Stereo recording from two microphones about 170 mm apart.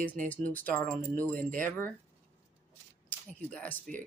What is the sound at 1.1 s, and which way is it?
Speech, 10° left (ahead or behind).